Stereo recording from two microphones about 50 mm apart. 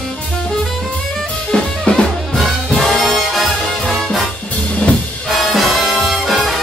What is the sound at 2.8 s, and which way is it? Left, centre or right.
Music, centre.